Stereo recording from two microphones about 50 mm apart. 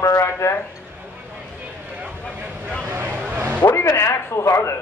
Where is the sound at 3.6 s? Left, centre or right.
Left.